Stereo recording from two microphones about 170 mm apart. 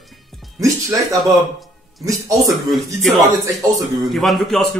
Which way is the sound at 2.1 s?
20° right (ahead or behind).